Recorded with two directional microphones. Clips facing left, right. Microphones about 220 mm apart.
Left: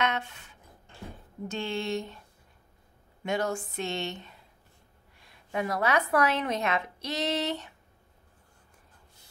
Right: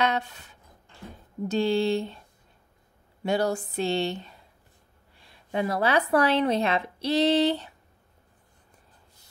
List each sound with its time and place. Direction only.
0.0 s a sound: 35° right (ahead or behind)
1.5 s a woman's voice: 35° right (ahead or behind)
3.3 s a woman's voice: 35° right (ahead or behind)
5.2 s a woman's voice: 30° right (ahead or behind)